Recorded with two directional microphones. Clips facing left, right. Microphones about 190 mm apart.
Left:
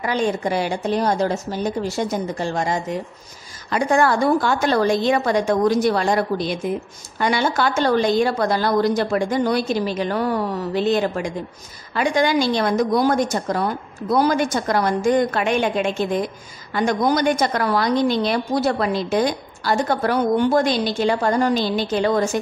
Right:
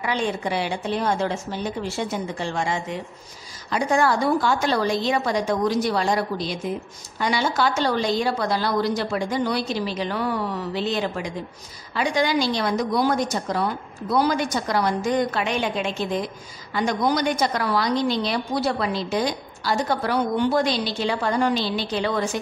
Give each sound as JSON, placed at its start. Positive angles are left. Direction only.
{"t": 0.0, "sound": "a woman's voice", "side_deg": 40}
{"t": 3.7, "sound": "a woman's voice", "side_deg": 55}